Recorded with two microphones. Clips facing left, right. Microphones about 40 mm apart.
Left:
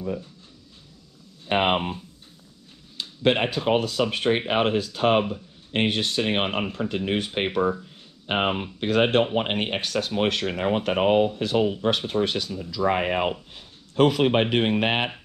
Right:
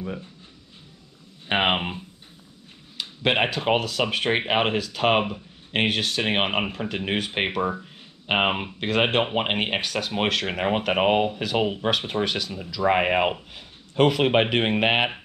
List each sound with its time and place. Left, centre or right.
0.0 s speech: right
1.5 s a sound: right
3.3 s speech: right
4.7 s speech: right